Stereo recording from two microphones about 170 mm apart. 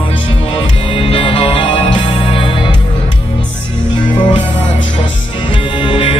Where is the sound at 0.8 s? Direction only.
35° left (ahead or behind).